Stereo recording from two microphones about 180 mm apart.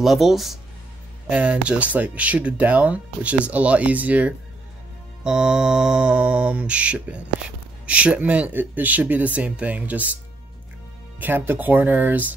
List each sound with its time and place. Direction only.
0.0 s speech: centre (ahead or behind)
1.3 s mantra: 5° right (ahead or behind)
11.1 s mantra: 10° right (ahead or behind)